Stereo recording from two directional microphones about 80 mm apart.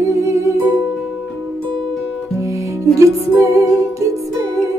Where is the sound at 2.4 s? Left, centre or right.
Right.